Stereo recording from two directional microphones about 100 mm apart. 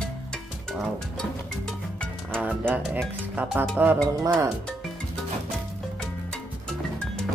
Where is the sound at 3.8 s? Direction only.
20° right (ahead or behind).